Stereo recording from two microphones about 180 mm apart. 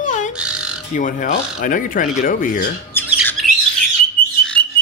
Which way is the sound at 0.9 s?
45° left (ahead or behind).